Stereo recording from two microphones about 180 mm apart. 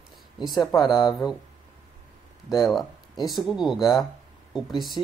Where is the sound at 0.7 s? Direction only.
25° left (ahead or behind).